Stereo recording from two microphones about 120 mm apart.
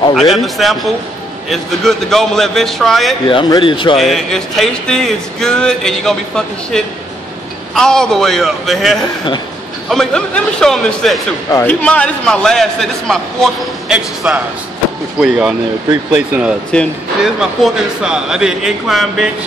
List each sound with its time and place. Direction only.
0.1 s speech: centre (ahead or behind)
3.6 s a man's voice: 45° left (ahead or behind)
3.9 s speech: centre (ahead or behind)